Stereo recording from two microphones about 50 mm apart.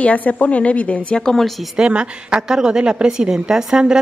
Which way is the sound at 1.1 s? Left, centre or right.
Centre.